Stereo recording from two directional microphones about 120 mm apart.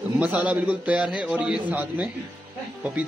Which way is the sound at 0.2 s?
10° right (ahead or behind).